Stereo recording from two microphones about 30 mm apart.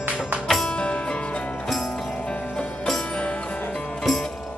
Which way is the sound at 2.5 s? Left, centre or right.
Centre.